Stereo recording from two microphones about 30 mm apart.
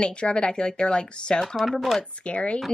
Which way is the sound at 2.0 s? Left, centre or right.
Left.